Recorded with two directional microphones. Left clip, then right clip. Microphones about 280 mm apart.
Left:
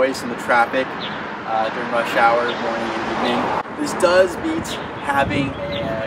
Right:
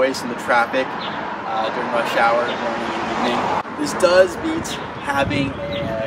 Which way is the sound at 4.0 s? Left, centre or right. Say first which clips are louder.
Right 1 dB; centre.